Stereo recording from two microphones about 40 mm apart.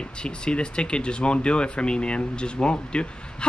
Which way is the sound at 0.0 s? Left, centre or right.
Left.